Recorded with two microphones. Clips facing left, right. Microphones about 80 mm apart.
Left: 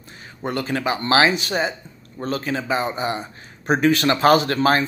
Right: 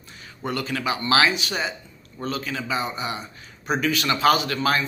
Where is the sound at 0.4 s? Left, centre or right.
Left.